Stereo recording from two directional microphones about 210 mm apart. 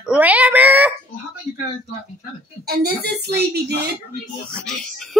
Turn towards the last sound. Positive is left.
turn(degrees=0)  # may be behind; listen again after turning